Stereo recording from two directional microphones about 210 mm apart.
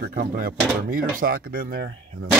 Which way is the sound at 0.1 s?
45° right (ahead or behind).